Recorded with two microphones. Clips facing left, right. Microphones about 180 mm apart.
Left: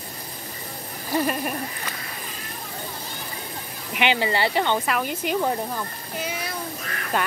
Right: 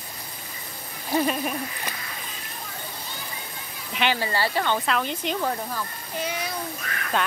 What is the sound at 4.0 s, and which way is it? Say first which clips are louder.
Speech: left 3 dB; 20° left (ahead or behind).